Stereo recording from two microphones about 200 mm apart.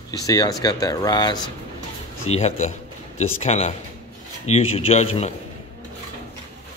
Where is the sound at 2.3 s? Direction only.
30° left (ahead or behind).